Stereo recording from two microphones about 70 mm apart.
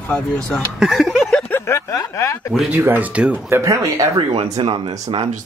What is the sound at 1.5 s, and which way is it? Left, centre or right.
Snicker, left.